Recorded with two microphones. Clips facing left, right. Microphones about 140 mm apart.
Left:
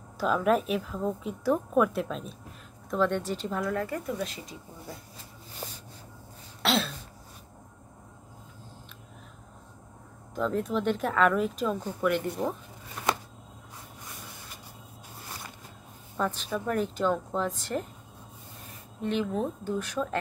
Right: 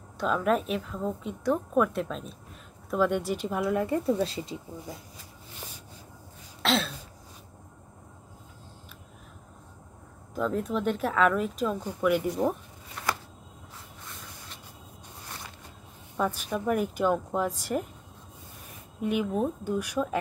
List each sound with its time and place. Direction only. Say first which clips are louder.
0.2 s a woman's voice: left 1 dB; centre (ahead or behind)
3.6 s speech: right 8 dB; 25° right (ahead or behind)
6.6 s throat clearing: even; centre (ahead or behind)
10.3 s a woman's voice: even; centre (ahead or behind)
16.2 s speech: right 1 dB; 10° right (ahead or behind)
18.9 s speech: right 2 dB; 10° right (ahead or behind)